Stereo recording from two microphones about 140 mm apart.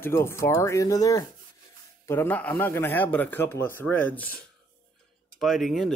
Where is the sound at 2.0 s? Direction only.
15° left (ahead or behind).